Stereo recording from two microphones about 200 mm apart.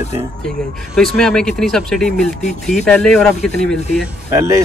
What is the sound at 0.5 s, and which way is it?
Speech, 5° left (ahead or behind).